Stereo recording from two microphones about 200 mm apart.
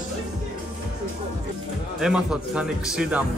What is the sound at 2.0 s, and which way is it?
Speech, 5° right (ahead or behind).